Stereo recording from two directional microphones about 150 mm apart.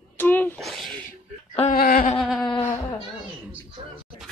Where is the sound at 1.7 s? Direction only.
75° left (ahead or behind).